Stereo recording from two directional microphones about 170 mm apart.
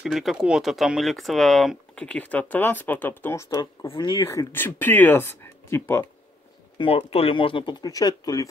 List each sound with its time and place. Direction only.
0.0 s speech: centre (ahead or behind); by 3.9 s 15° left (ahead or behind)
3.9 s speech: 30° left (ahead or behind)
4.3 s speech: 15° left (ahead or behind)
6.8 s speech: 35° left (ahead or behind)